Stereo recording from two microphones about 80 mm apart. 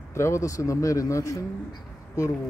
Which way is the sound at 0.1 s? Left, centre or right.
Left.